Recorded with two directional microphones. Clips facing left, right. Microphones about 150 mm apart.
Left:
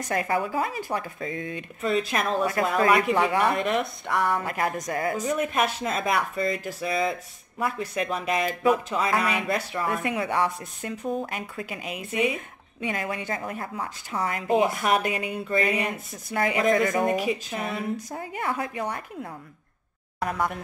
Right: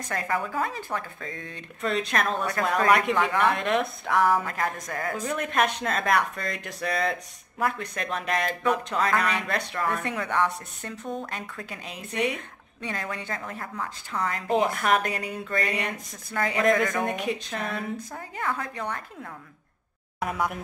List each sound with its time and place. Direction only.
0.1 s speech: 15° left (ahead or behind)
4.5 s speech: 15° left (ahead or behind)
14.5 s speech: 5° left (ahead or behind)
16.9 s speech: 5° left (ahead or behind)
20.2 s speech: centre (ahead or behind)